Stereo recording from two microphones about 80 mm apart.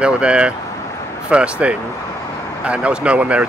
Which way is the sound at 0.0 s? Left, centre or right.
Centre.